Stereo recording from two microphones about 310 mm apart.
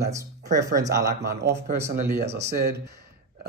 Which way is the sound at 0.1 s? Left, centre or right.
Centre.